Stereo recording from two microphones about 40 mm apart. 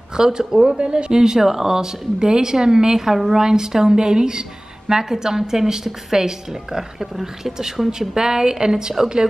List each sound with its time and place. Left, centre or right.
0.2 s speech: centre
0.7 s speech: right